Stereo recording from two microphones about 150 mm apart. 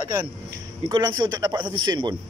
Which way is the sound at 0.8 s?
30° right (ahead or behind).